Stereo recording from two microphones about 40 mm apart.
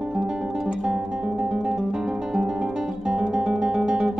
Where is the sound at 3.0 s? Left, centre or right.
Centre.